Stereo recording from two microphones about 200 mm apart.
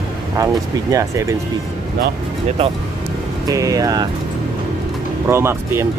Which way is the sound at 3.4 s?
15° right (ahead or behind).